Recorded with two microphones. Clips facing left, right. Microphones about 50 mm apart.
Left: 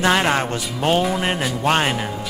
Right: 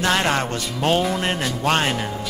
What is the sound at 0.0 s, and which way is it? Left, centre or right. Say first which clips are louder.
Speech: left 2 dB; centre.